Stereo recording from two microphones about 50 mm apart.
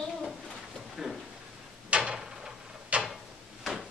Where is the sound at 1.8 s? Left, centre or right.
Right.